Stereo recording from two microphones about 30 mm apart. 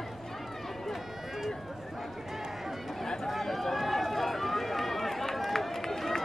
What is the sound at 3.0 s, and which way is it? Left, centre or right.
Run, centre.